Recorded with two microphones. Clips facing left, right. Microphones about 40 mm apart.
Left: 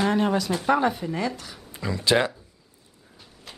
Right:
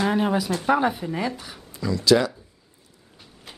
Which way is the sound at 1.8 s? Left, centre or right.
Left.